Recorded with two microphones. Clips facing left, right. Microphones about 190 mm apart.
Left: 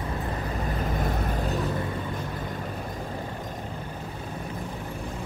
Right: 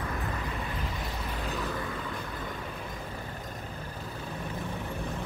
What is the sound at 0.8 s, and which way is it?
Vehicle, 50° left (ahead or behind).